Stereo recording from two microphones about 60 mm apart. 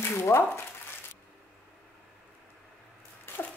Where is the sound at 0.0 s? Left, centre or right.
Left.